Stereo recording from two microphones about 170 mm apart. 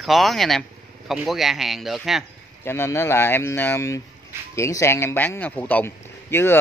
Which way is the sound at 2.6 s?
15° left (ahead or behind).